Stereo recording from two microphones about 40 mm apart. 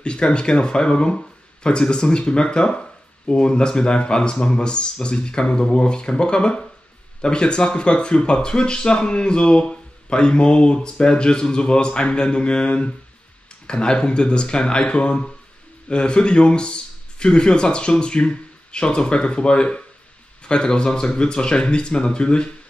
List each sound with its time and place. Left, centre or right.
0.0 s speech: left